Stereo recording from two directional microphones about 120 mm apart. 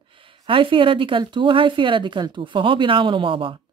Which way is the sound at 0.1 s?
45° right (ahead or behind).